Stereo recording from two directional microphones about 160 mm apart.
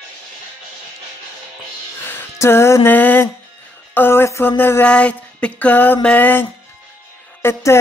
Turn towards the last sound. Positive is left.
turn(degrees=15)  # may be behind; listen again after turning